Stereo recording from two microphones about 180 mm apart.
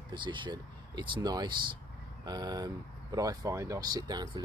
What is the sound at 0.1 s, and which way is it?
Speech, 25° right (ahead or behind).